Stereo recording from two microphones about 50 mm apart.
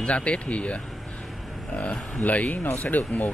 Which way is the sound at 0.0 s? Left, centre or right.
Left.